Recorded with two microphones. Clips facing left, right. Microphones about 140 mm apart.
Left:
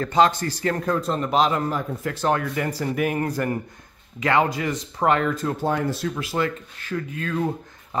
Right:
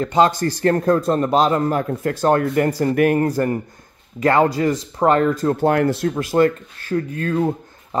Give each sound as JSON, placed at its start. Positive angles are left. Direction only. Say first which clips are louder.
{"t": 0.0, "sound": "speech", "louder": "right 3 dB", "side_deg": -25}
{"t": 0.3, "sound": "a man's voice", "louder": "right 7 dB", "side_deg": -45}
{"t": 1.7, "sound": "speech", "louder": "right 6 dB", "side_deg": -55}
{"t": 3.2, "sound": "a man's voice", "louder": "right 6 dB", "side_deg": -35}
{"t": 5.6, "sound": "speech", "louder": "right 8 dB", "side_deg": -65}
{"t": 6.0, "sound": "speech", "louder": "right 8 dB", "side_deg": -45}
{"t": 7.3, "sound": "speech", "louder": "right 4 dB", "side_deg": -25}